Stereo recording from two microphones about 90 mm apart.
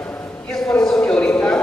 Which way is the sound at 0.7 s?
10° left (ahead or behind).